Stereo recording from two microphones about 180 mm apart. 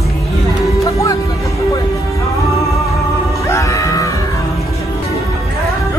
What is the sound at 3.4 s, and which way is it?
Music, 15° left (ahead or behind).